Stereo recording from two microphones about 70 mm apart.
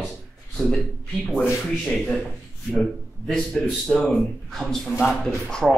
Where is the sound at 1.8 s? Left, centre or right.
Centre.